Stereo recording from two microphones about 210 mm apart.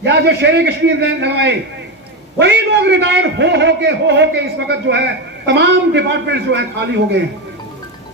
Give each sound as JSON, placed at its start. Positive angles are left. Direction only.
{"t": 0.0, "sound": "a man's voice", "side_deg": -55}